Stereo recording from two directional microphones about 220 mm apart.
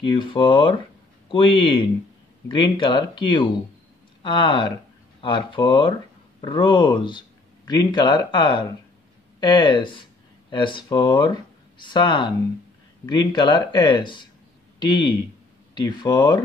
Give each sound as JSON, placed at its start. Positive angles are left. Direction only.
{"t": 0.0, "sound": "speech", "side_deg": 20}